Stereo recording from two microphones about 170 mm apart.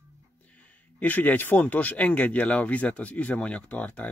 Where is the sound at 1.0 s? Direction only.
10° left (ahead or behind).